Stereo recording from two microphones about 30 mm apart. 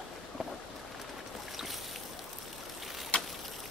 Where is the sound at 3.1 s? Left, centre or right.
Left.